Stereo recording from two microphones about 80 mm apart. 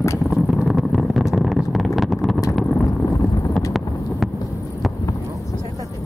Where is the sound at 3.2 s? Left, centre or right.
Left.